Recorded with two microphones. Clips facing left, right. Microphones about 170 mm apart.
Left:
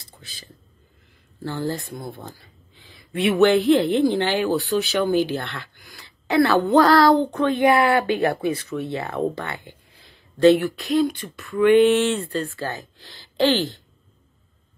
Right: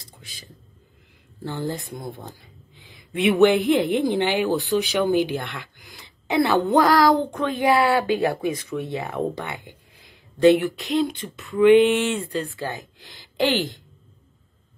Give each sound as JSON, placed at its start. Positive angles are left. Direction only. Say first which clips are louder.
{"t": 1.4, "sound": "speech", "louder": "left 2 dB", "side_deg": -20}